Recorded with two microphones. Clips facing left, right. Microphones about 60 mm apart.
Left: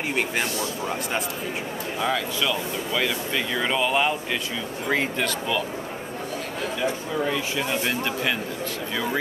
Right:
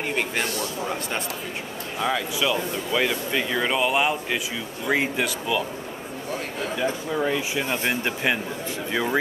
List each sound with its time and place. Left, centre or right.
0.1 s speech: centre
2.0 s speech: centre
6.8 s speech: centre